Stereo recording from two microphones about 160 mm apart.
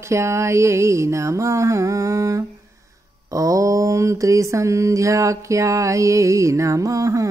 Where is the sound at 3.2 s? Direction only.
20° right (ahead or behind).